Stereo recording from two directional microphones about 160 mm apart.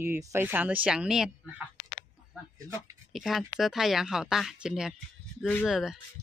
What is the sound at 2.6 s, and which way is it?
Speech, 20° right (ahead or behind).